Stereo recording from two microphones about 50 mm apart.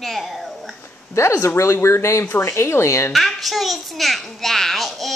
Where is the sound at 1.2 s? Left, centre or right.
Left.